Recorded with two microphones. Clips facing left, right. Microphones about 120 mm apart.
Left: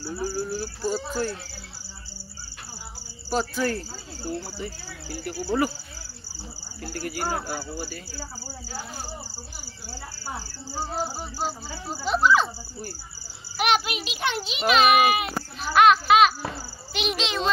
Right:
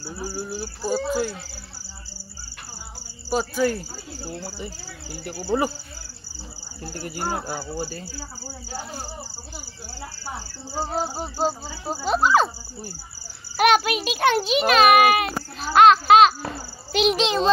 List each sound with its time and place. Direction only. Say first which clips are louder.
0.0 s speech: left 3 dB; 5° right (ahead or behind)
3.3 s speech: right 3 dB; 5° right (ahead or behind)
4.4 s speech: even; 30° right (ahead or behind)
6.8 s speech: even; 25° right (ahead or behind)
10.7 s speech: right 3 dB; 25° right (ahead or behind)
12.1 s speech: right 2 dB; 40° right (ahead or behind)
13.6 s a child's voice: right 5 dB; 45° right (ahead or behind)
15.6 s speech: right 3 dB; 30° right (ahead or behind)